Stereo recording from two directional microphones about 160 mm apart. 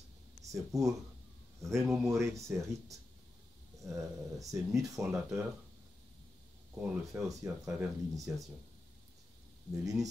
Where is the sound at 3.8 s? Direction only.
20° right (ahead or behind).